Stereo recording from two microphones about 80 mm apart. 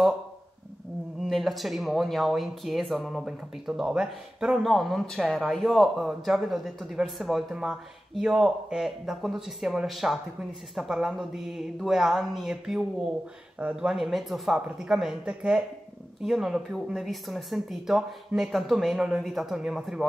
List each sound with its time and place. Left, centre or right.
1.2 s speech: centre
13.6 s speech: centre
13.8 s speech: centre
16.2 s speech: centre